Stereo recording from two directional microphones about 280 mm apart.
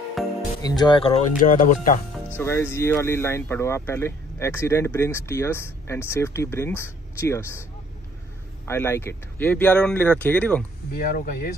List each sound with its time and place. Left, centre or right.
0.2 s music: centre
0.7 s speech: centre
1.4 s speech: left
2.3 s speech: centre
8.6 s speech: centre
10.9 s speech: left